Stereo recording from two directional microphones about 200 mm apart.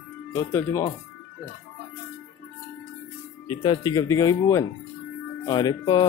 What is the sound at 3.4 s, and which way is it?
Speech, 25° left (ahead or behind).